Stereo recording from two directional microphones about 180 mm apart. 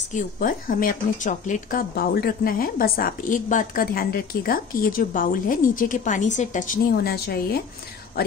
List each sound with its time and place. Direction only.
0.1 s a woman's voice: 50° left (ahead or behind)